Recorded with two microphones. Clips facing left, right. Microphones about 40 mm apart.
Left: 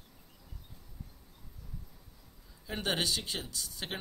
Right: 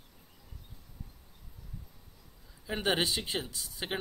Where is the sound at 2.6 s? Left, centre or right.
Centre.